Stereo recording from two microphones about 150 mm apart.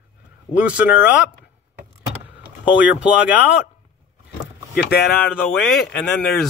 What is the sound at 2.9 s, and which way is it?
Speech, 10° right (ahead or behind).